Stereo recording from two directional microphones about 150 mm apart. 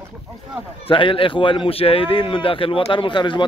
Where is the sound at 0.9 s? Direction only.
35° left (ahead or behind).